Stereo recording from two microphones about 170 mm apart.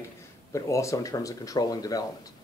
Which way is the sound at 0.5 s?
15° left (ahead or behind).